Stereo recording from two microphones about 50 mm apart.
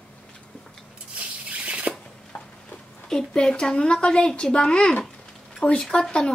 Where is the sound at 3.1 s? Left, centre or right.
Centre.